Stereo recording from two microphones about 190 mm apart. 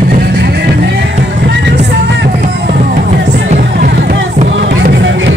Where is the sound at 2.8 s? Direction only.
45° right (ahead or behind).